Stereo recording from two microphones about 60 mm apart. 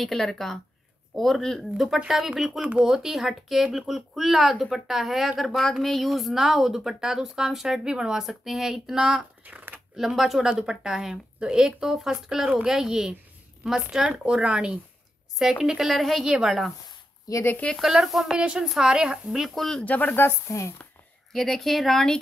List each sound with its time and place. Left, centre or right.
0.0 s a woman's voice: centre
9.4 s a sound: right
9.9 s a woman's voice: centre
15.3 s a woman's voice: centre
17.3 s speech: left
17.7 s a woman's voice: centre
18.3 s speech: centre
19.5 s a woman's voice: centre
19.8 s speech: left
20.2 s speech: left
21.3 s a woman's voice: centre